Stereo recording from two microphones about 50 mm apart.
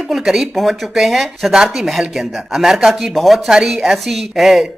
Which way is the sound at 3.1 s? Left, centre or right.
Centre.